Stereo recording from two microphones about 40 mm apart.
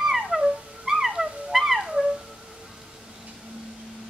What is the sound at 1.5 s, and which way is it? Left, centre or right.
Music, centre.